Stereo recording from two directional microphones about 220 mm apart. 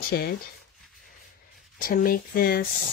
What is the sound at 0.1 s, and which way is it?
Speech, 50° left (ahead or behind).